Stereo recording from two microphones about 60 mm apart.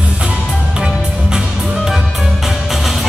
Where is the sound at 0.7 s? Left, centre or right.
Centre.